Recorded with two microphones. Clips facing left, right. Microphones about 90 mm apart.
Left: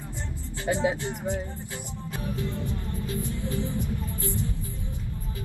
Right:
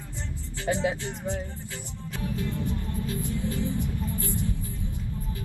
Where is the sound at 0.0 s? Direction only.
15° left (ahead or behind).